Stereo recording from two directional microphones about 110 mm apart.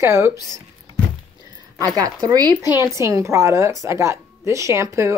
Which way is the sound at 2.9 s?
25° right (ahead or behind).